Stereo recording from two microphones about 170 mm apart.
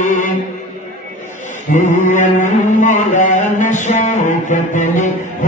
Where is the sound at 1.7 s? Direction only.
45° left (ahead or behind).